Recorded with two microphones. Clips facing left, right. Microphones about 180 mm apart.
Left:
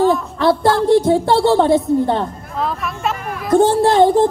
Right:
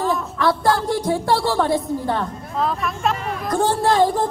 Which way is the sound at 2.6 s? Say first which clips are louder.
Even; centre (ahead or behind).